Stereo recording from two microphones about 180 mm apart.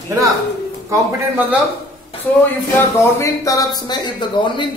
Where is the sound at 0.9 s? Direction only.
10° right (ahead or behind).